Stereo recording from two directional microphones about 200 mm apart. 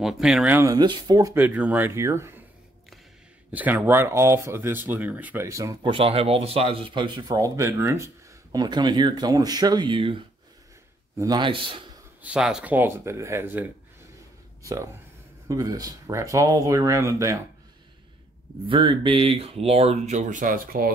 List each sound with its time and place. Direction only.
0.0 s speech: 5° right (ahead or behind)
3.5 s speech: 10° right (ahead or behind); by 11.8 s 25° right (ahead or behind)
12.2 s speech: 5° right (ahead or behind)
18.7 s speech: 25° right (ahead or behind); by 20.9 s 45° right (ahead or behind)